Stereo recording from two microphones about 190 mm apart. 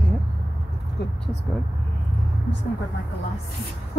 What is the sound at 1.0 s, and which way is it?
Speech, 65° left (ahead or behind).